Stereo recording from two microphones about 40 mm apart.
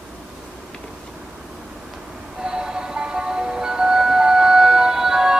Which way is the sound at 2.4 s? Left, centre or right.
Centre.